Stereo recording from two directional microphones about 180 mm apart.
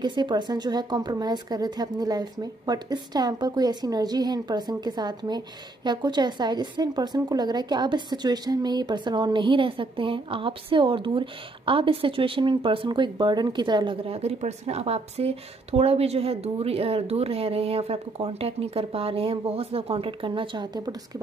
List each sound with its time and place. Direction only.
0.0 s speech: 25° right (ahead or behind)